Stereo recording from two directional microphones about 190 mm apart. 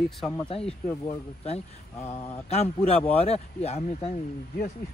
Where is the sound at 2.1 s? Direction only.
35° left (ahead or behind).